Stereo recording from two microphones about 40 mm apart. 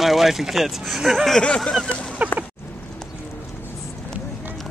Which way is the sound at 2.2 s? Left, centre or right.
Right.